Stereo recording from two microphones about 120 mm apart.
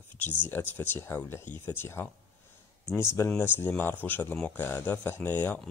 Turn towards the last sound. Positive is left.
turn(degrees=15)  # may be behind; listen again after turning